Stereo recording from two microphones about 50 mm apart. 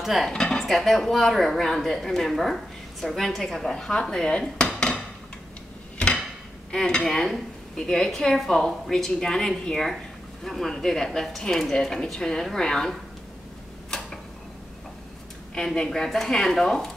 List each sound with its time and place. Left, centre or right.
0.0 s dishes: centre
0.3 s speech: centre
4.7 s dishes: centre
6.7 s speech: centre
13.8 s tick-tock: centre
15.5 s speech: centre